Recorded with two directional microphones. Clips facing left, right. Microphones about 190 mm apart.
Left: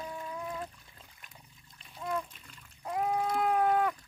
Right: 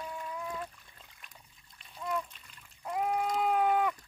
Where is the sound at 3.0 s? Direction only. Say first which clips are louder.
Even; 10° left (ahead or behind).